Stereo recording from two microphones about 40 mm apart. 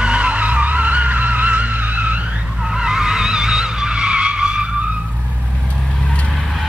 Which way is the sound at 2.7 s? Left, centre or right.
Centre.